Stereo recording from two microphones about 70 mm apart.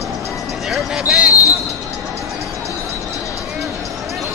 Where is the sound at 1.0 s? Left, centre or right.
Centre.